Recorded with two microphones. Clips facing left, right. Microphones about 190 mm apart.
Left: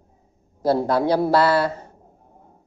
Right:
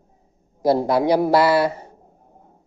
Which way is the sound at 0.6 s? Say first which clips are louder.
Right 2 dB; 15° right (ahead or behind).